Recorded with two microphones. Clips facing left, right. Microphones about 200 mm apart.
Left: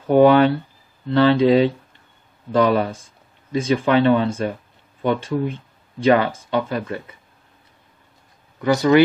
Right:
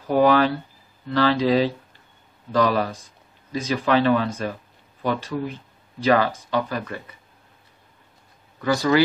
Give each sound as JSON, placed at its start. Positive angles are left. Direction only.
{"t": 0.0, "sound": "speech", "side_deg": 25}
{"t": 8.5, "sound": "speech", "side_deg": 20}